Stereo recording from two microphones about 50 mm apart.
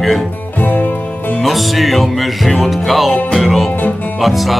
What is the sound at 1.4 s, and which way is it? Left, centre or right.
Music, centre.